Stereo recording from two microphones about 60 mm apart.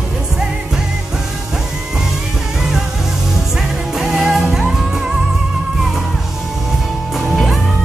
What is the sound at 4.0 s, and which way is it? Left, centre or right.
Music, centre.